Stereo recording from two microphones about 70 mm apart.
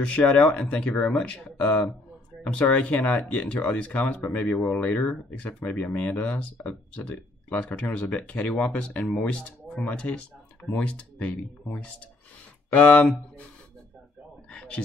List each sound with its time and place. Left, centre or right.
0.0 s speech: centre
1.2 s speech: centre
14.5 s a sound: centre